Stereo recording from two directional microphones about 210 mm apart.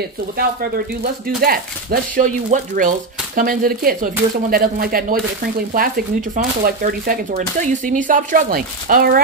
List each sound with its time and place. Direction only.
1.0 s speech: 45° right (ahead or behind)